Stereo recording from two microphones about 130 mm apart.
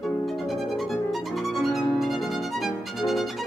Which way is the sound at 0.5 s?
Centre (ahead or behind).